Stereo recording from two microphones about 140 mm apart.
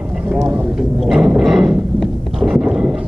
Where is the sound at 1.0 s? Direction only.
5° right (ahead or behind).